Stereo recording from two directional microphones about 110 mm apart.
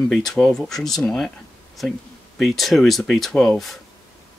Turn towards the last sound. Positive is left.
turn(degrees=5)  # may be behind; listen again after turning